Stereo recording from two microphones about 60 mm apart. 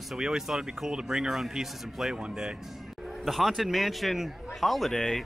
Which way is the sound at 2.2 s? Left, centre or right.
Centre.